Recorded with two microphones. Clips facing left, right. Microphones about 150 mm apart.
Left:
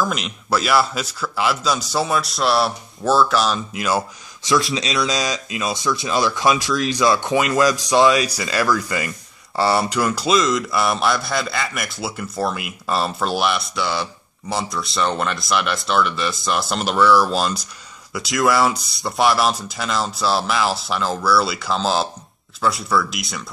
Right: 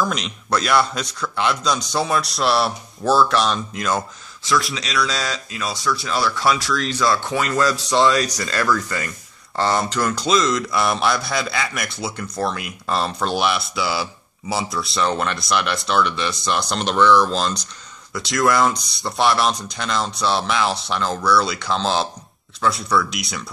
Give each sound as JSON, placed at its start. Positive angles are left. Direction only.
{"t": 0.0, "sound": "a man's voice", "side_deg": 5}
{"t": 4.5, "sound": "speech", "side_deg": 20}
{"t": 7.9, "sound": "a man's voice", "side_deg": 0}